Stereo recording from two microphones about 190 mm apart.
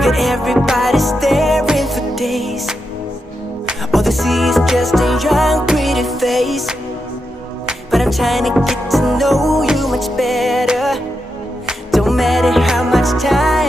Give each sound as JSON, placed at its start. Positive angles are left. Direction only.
{"t": 0.0, "sound": "music", "side_deg": 0}